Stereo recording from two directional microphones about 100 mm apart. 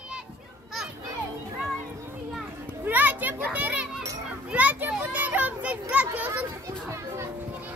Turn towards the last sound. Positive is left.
turn(degrees=-15)  # may be behind; listen again after turning